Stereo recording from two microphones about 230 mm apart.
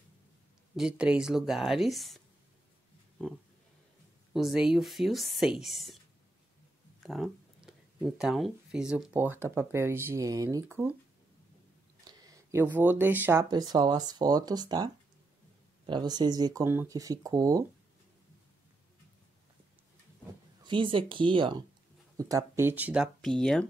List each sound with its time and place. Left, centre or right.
0.7 s speech: centre
4.3 s speech: centre
7.0 s speech: centre
12.0 s speech: centre
15.9 s speech: centre
20.6 s speech: right; by 23.7 s centre